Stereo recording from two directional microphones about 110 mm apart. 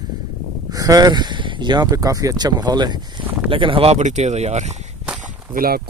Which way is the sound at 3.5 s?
55° right (ahead or behind).